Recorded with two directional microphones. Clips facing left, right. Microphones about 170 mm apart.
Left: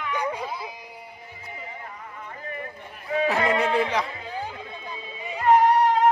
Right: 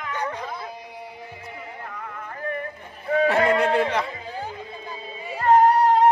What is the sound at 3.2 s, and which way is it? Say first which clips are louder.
Speech: right 3 dB; centre (ahead or behind).